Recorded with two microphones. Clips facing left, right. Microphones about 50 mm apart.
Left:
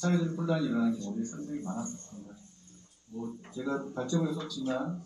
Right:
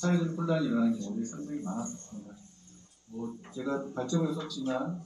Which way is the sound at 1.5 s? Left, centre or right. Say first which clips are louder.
Right 1 dB; centre.